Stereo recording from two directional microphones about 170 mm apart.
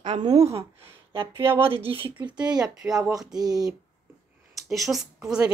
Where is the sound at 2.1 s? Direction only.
5° right (ahead or behind).